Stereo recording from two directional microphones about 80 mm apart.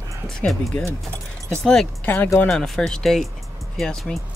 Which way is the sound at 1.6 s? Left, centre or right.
Centre.